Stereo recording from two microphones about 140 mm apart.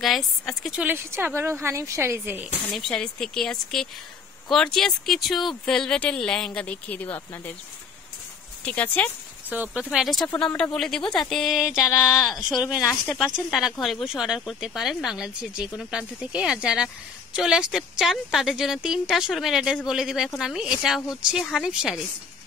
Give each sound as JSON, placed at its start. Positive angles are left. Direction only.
{"t": 0.0, "sound": "a woman's voice", "side_deg": 0}
{"t": 0.8, "sound": "a woman's voice", "side_deg": -15}
{"t": 2.7, "sound": "a woman's voice", "side_deg": 0}
{"t": 8.6, "sound": "speech", "side_deg": 10}
{"t": 9.5, "sound": "a woman's voice", "side_deg": -10}